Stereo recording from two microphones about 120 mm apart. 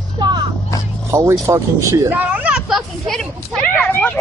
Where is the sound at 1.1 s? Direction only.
25° right (ahead or behind).